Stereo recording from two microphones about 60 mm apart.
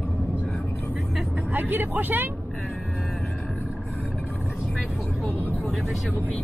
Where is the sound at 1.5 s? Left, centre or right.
Right.